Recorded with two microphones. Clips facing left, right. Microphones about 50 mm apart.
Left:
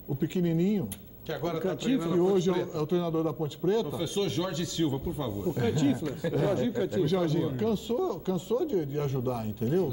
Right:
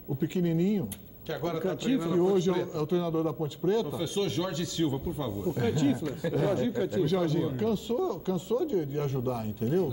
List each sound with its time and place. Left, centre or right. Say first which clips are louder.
0.2 s speech: even; centre